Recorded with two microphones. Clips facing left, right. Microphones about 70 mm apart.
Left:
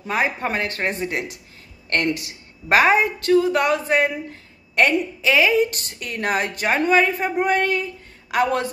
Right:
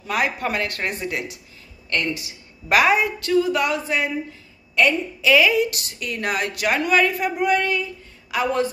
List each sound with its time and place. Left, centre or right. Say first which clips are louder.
0.0 s a woman's voice: left 1 dB; left
1.9 s a woman's voice: left 3 dB; left
2.7 s a woman's voice: left 1 dB; left
5.2 s a woman's voice: right 1 dB; left